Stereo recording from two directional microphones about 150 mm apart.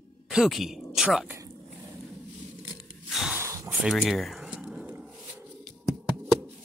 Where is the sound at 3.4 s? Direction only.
20° right (ahead or behind).